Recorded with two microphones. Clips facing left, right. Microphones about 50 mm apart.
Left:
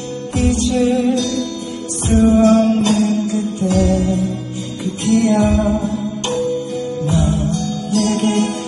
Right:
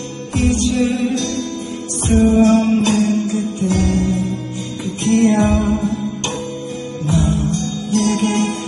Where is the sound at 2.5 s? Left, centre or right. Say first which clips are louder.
Left 1 dB; right.